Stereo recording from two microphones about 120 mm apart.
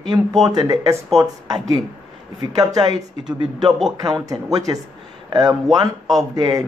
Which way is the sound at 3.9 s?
30° right (ahead or behind).